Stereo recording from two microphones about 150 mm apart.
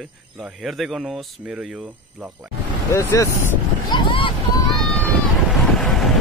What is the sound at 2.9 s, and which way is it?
Speech, 20° left (ahead or behind).